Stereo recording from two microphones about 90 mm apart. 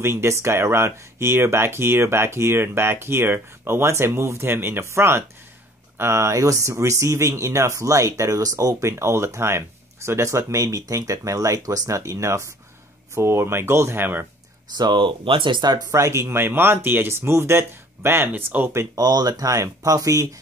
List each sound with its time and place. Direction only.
0.0 s speech: 30° right (ahead or behind)
14.8 s speech: 60° right (ahead or behind)
15.9 s speech: 35° right (ahead or behind)
18.9 s speech: 45° right (ahead or behind)